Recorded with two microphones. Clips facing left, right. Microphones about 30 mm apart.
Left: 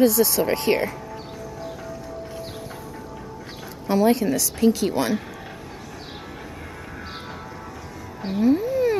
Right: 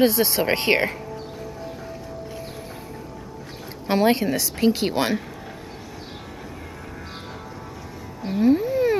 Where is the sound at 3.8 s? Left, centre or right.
Right.